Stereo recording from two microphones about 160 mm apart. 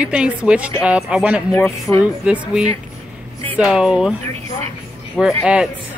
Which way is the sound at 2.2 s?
5° right (ahead or behind).